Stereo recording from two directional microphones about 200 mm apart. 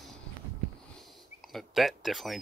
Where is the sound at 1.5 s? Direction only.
Centre (ahead or behind).